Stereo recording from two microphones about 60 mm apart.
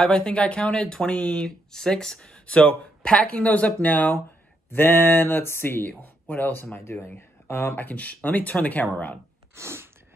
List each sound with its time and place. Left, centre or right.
0.0 s speech: centre; by 7.7 s left
7.7 s speech: left
9.6 s sneeze: right